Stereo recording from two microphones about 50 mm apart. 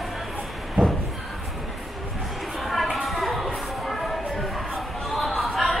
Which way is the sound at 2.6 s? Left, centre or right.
Centre.